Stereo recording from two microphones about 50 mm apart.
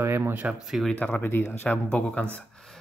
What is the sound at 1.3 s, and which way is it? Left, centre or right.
Speech, left.